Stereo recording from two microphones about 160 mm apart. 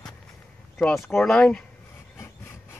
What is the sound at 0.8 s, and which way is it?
Speech, 5° left (ahead or behind).